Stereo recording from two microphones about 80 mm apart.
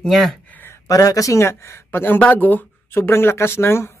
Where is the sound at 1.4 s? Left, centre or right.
Left.